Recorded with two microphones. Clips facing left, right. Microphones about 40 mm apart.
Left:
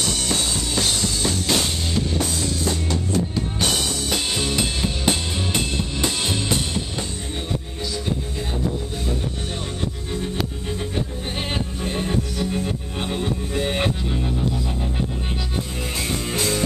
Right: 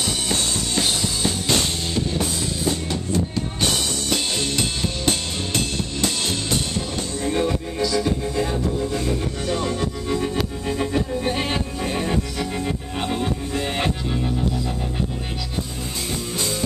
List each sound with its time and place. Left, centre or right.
0.3 s music: centre
2.0 s drum kit: centre
4.0 s music: centre
7.2 s music: right
10.7 s music: right
13.2 s music: centre